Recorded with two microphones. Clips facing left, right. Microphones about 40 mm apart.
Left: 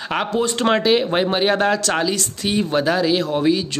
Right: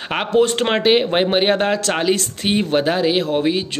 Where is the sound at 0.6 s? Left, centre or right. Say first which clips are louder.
Right 1 dB; right.